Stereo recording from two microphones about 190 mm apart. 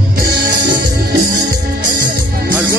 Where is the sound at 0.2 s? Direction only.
55° right (ahead or behind).